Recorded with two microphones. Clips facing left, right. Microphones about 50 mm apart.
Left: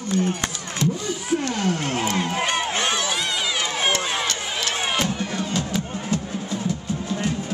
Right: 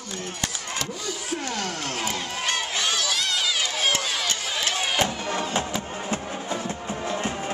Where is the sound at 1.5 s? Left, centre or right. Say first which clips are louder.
Left 6 dB; centre.